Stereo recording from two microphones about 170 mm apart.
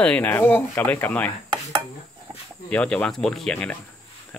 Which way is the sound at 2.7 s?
10° left (ahead or behind).